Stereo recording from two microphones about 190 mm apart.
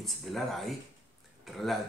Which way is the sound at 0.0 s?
Centre (ahead or behind).